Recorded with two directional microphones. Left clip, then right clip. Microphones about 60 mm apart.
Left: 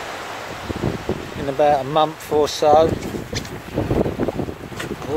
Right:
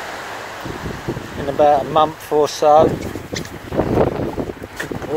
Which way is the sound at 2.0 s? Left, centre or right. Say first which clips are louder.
Right 2 dB; left.